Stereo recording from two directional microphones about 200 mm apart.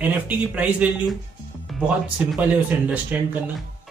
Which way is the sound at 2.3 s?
10° right (ahead or behind).